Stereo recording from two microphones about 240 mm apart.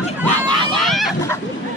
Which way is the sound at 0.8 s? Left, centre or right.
Centre.